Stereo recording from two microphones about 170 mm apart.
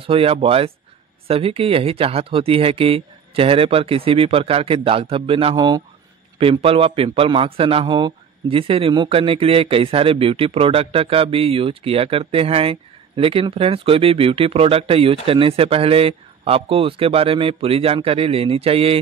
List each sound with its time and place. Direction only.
0.0 s a man's voice: 35° right (ahead or behind)